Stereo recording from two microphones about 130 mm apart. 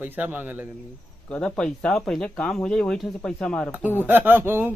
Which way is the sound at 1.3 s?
10° left (ahead or behind).